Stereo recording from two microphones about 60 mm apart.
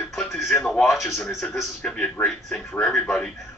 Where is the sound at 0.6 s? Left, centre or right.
Centre.